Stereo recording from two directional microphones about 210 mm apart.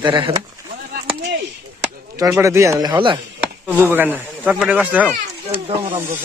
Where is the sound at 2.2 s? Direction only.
15° right (ahead or behind).